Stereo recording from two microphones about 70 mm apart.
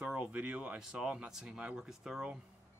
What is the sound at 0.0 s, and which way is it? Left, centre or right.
Speech, right.